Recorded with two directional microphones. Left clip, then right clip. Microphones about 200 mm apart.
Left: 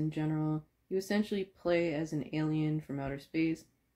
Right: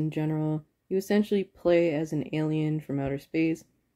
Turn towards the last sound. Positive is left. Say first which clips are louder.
# right 6 dB
turn(degrees=-45)  # may be behind; listen again after turning